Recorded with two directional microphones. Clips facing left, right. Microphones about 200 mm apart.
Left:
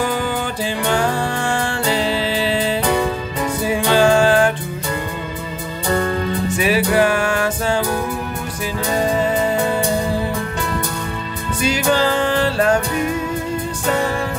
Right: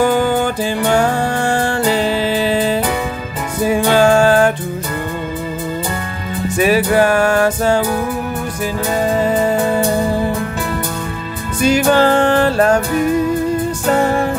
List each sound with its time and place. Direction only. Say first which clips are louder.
0.0 s music: right 7 dB; 50° right (ahead or behind)
6.6 s music: right 4 dB; 45° right (ahead or behind)
11.6 s music: right 6 dB; 50° right (ahead or behind)